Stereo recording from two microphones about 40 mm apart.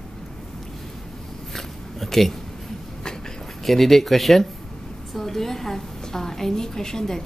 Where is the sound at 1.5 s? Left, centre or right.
Centre.